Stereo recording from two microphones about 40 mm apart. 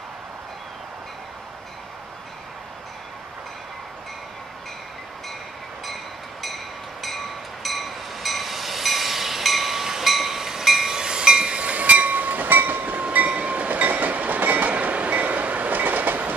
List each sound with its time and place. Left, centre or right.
6.4 s train: centre; by 13.0 s right
13.3 s train: right